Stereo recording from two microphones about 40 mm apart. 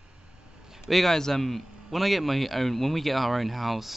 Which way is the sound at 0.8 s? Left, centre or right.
Centre.